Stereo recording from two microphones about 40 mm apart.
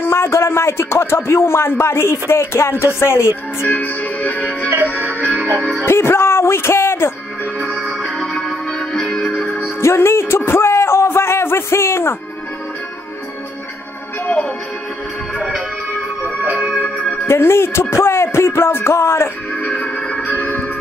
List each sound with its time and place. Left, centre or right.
0.0 s a man's voice: left
3.7 s music: left
5.9 s a man's voice: left
7.6 s music: centre
8.2 s music: centre
9.8 s speech: left
16.4 s music: right
16.8 s music: left
17.3 s a man's voice: left
19.8 s music: left
20.2 s organ: left